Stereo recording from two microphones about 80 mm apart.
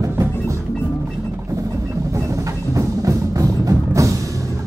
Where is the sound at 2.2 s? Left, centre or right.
Right.